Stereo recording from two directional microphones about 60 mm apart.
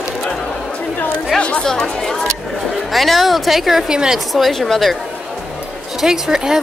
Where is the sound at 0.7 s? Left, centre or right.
Left.